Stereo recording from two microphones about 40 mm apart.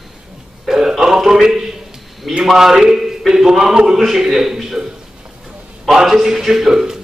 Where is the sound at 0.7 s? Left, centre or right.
Centre.